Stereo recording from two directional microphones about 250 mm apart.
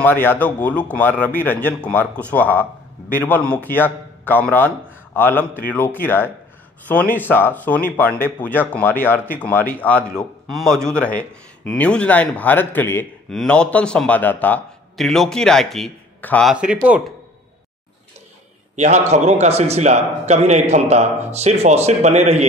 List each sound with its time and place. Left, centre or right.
0.0 s speech: centre
18.8 s a man's voice: right